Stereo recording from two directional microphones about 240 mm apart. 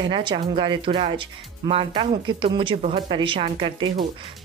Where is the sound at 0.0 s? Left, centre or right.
Right.